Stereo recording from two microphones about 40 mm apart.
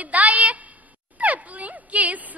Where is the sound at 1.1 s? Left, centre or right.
Right.